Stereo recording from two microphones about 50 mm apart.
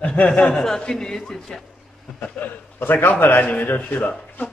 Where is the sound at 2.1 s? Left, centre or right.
Left.